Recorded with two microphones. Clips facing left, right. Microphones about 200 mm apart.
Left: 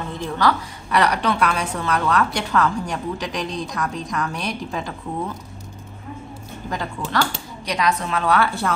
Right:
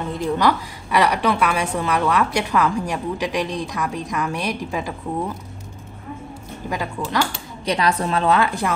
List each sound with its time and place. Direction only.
0.4 s a woman's voice: 10° right (ahead or behind)
6.7 s a woman's voice: 10° right (ahead or behind)
7.6 s speech: 30° right (ahead or behind)
8.4 s a woman's voice: 15° right (ahead or behind)